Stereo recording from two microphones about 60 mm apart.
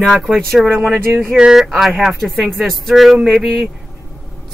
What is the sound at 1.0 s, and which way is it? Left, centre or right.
Speech, right.